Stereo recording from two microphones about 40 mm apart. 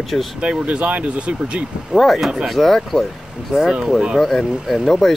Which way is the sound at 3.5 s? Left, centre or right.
Centre.